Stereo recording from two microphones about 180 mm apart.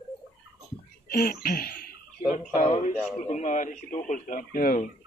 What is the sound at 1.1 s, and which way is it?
Cough, 60° left (ahead or behind).